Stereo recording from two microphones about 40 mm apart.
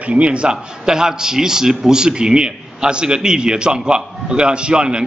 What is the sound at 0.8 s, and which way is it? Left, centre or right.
A man's voice, centre.